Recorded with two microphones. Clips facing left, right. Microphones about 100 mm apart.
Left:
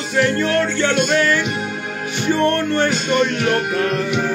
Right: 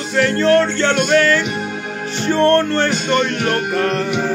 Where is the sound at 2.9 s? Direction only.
5° left (ahead or behind).